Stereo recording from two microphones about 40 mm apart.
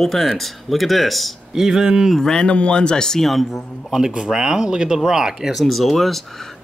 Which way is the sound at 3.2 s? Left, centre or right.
Centre.